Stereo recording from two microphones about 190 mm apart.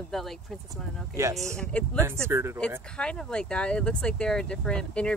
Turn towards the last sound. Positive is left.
turn(degrees=5)  # may be behind; listen again after turning